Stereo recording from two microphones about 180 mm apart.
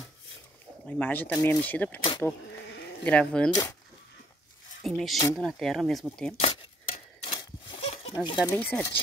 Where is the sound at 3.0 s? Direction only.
5° left (ahead or behind).